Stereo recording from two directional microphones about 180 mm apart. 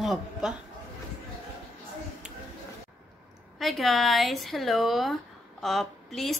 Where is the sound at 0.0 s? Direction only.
Centre (ahead or behind).